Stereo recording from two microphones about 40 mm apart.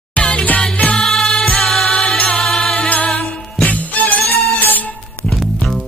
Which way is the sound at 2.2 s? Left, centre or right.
Centre.